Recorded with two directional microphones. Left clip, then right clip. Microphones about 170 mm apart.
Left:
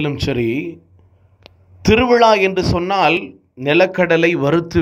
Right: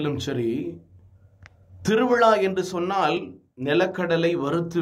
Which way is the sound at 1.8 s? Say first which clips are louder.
Left 8 dB; 20° left (ahead or behind).